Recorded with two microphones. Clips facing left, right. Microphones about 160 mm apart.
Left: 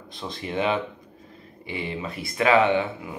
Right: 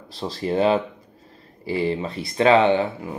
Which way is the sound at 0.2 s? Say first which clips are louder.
Right 6 dB; 35° right (ahead or behind).